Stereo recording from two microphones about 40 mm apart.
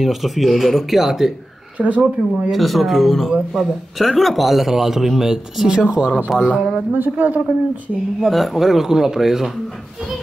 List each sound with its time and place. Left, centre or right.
0.0 s speech: centre
1.8 s speech: right
2.5 s speech: centre
5.9 s speech: right
6.9 s speech: right
8.3 s speech: centre